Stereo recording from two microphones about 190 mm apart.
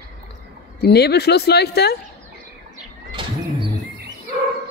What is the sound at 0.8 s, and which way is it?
Speech, 55° left (ahead or behind).